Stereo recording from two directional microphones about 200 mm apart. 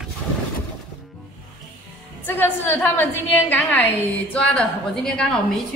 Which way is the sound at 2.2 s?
10° left (ahead or behind).